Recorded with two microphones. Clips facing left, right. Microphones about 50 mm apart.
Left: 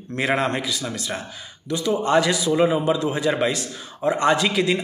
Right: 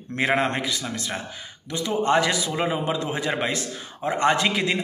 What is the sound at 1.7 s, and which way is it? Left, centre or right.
A man's voice, right.